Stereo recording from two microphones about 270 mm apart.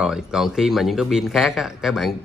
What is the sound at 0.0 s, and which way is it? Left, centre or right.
Speech, centre.